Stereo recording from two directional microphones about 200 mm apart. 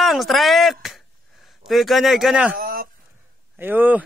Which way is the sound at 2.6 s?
45° right (ahead or behind).